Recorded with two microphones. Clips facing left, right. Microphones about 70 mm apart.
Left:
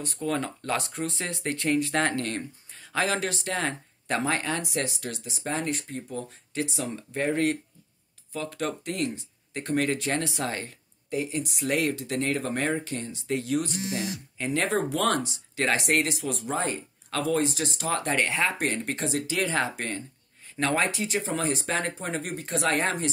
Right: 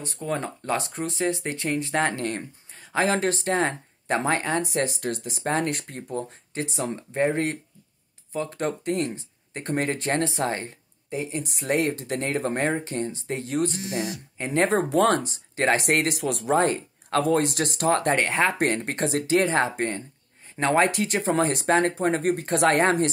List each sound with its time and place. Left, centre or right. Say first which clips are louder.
0.0 s speech: even; centre; by 17.8 s right
17.8 s speech: right 5 dB; right
18.5 s speech: right 4 dB; right
20.8 s speech: right 5 dB; right